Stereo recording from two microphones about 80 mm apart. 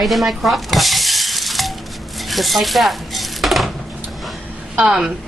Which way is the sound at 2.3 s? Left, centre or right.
Centre.